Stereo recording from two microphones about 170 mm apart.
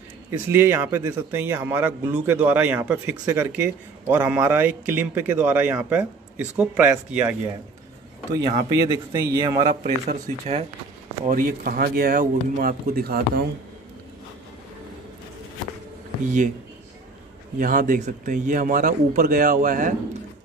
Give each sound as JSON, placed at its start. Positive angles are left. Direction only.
{"t": 0.5, "sound": "a man's voice", "side_deg": -15}
{"t": 8.4, "sound": "a man's voice", "side_deg": -20}
{"t": 9.8, "sound": "a man's voice", "side_deg": -40}
{"t": 11.2, "sound": "speech", "side_deg": -55}
{"t": 17.6, "sound": "a man's voice", "side_deg": -55}